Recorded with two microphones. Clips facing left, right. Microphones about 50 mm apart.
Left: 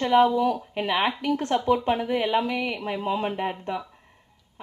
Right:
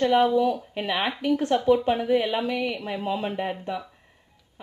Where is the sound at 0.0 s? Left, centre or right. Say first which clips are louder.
Even; left.